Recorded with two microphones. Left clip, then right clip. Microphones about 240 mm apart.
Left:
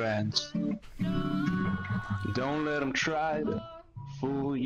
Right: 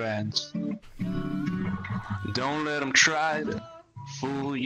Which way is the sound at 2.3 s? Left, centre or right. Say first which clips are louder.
Right 3 dB; right.